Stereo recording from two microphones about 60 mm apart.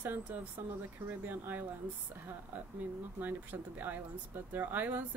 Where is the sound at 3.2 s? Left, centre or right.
Right.